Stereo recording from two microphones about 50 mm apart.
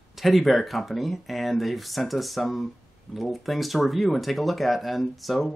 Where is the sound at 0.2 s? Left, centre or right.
Centre.